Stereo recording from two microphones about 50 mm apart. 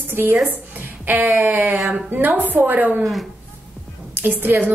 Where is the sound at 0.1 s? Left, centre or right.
Right.